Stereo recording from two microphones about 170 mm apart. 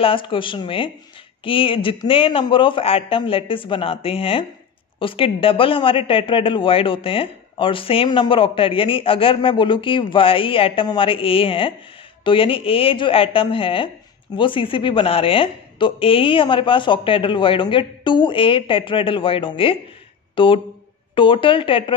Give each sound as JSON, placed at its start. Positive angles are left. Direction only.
{"t": 0.0, "sound": "a woman's voice", "side_deg": 30}